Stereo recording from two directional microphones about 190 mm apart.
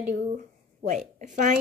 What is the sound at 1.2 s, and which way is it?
Speech, 45° right (ahead or behind).